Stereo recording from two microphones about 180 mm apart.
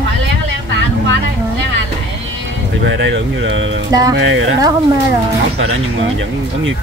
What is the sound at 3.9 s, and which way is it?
Speech, 20° right (ahead or behind).